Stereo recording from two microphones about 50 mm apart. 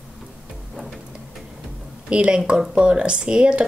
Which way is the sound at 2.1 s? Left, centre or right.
Right.